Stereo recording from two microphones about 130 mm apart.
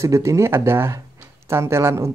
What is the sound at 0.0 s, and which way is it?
Speech, 25° right (ahead or behind).